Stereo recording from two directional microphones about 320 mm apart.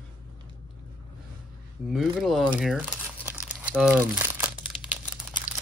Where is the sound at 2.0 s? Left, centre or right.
Centre.